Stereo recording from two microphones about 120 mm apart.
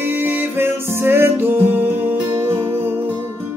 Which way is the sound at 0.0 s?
20° right (ahead or behind).